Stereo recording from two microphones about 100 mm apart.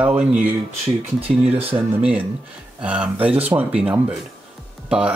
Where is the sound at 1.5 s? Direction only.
70° right (ahead or behind).